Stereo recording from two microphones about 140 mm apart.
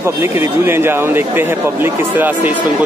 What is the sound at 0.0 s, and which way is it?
Speech, 20° right (ahead or behind).